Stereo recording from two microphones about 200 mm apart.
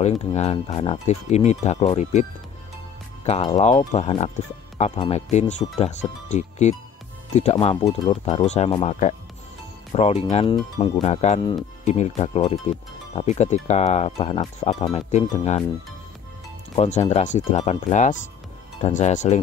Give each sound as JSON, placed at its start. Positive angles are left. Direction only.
{"t": 0.0, "sound": "speech", "side_deg": 30}
{"t": 3.3, "sound": "speech", "side_deg": 30}
{"t": 16.7, "sound": "speech", "side_deg": 30}